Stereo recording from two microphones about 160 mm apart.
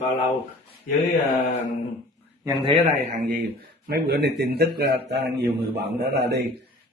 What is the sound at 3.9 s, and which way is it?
A man's voice, 85° right.